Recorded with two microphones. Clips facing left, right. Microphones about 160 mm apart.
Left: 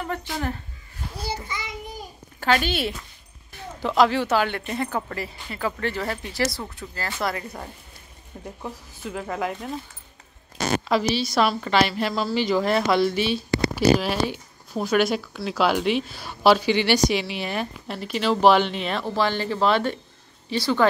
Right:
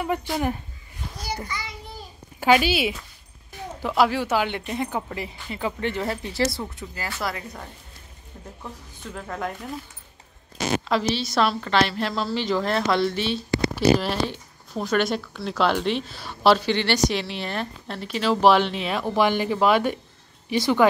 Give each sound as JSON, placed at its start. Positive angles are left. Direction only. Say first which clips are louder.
{"t": 1.2, "sound": "child singing", "louder": "even", "side_deg": 25}
{"t": 2.4, "sound": "speech", "louder": "right 3 dB", "side_deg": -10}
{"t": 6.8, "sound": "speech", "louder": "left 1 dB", "side_deg": -15}
{"t": 8.6, "sound": "a woman's voice", "louder": "left 4 dB", "side_deg": 5}
{"t": 10.9, "sound": "a woman's voice", "louder": "left 3 dB", "side_deg": 5}